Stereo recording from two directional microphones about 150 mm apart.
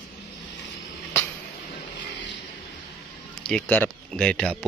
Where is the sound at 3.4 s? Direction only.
10° left (ahead or behind).